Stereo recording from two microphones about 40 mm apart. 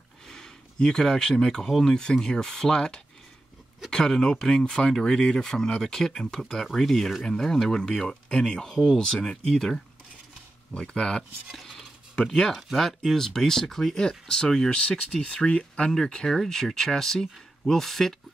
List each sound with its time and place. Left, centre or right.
0.3 s speech: centre
12.3 s speech: centre
14.0 s speech: centre
14.7 s speech: left
15.9 s speech: centre